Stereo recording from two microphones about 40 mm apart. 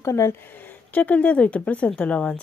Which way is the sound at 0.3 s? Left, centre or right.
Left.